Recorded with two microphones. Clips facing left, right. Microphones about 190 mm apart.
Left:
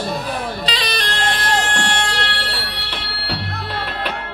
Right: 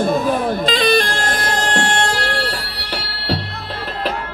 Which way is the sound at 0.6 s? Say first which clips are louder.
Right 9 dB; 45° right (ahead or behind).